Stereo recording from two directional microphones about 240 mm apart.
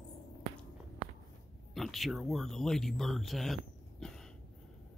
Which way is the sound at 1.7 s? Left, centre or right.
Centre.